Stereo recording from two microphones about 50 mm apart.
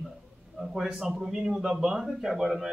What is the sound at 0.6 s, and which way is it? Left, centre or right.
A man's voice, centre.